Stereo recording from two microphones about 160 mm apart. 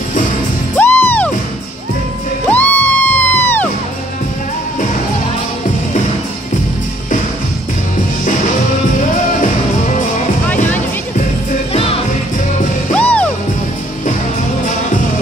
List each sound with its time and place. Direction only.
0.7 s music: 10° left (ahead or behind)
2.5 s music: 10° left (ahead or behind)
11.7 s music: 35° left (ahead or behind)
12.9 s music: 10° left (ahead or behind)